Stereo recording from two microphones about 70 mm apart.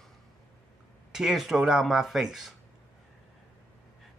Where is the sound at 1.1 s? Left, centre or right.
Centre.